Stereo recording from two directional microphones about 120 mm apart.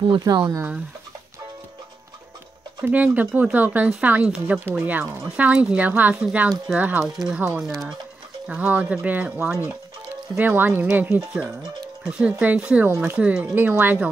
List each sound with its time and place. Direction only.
0.2 s speech: 35° right (ahead or behind)
2.8 s speech: 15° right (ahead or behind)
8.5 s speech: 10° right (ahead or behind)
12.0 s speech: 5° right (ahead or behind)